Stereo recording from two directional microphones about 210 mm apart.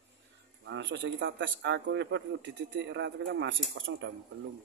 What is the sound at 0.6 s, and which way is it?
Speech, 60° right (ahead or behind).